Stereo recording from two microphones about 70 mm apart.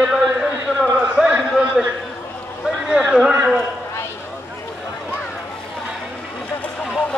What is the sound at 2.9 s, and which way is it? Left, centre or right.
Speech, centre.